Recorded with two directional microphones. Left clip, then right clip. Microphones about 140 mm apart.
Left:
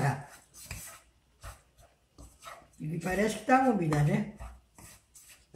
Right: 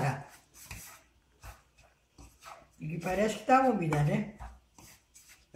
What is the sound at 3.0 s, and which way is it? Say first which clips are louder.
Speech: even; 65° left (ahead or behind).